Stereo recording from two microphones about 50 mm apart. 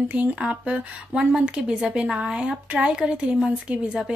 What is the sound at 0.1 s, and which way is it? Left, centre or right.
A woman's voice, right.